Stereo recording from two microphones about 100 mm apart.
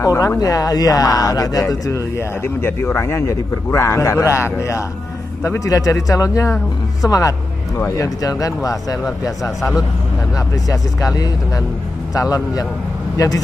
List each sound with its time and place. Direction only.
0.0 s speech: 35° left (ahead or behind)
9.4 s a man's voice: centre (ahead or behind)
10.7 s a man's voice: 35° left (ahead or behind)